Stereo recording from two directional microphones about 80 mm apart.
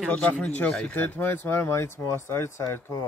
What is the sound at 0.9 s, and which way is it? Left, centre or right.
Speech, left.